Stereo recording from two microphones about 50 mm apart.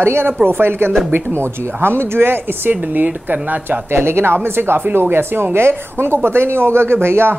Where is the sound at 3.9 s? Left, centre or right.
Right.